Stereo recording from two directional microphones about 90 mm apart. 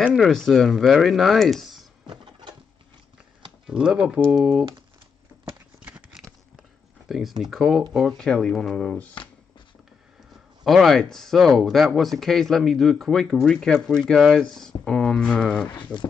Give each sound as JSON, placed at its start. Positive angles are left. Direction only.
{"t": 0.2, "sound": "speech", "side_deg": 5}
{"t": 3.6, "sound": "speech", "side_deg": -10}
{"t": 5.9, "sound": "a sound", "side_deg": -15}
{"t": 7.1, "sound": "speech", "side_deg": 0}
{"t": 10.6, "sound": "speech", "side_deg": 0}
{"t": 15.7, "sound": "speech", "side_deg": 55}